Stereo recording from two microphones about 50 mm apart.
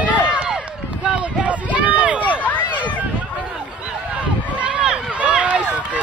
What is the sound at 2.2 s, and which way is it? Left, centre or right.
Run, left.